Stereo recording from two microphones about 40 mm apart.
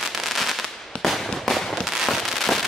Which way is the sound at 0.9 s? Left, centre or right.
Left.